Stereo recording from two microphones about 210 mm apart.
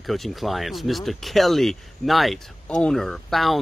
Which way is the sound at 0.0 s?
Centre (ahead or behind).